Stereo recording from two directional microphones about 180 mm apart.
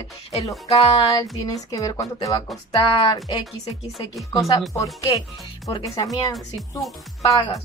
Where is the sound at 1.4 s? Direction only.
20° left (ahead or behind).